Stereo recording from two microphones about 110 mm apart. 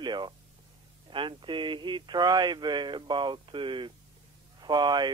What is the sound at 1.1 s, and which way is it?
Speech, 50° right (ahead or behind).